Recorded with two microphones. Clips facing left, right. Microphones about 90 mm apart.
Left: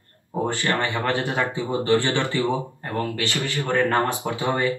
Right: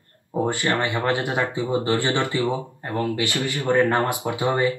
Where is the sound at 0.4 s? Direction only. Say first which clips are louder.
Right 1 dB; 20° right (ahead or behind).